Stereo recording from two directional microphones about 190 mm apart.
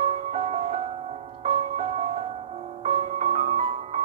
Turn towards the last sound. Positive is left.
turn(degrees=-35)  # may be behind; listen again after turning